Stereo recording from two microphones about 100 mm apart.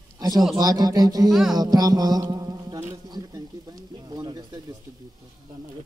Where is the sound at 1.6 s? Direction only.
40° right (ahead or behind).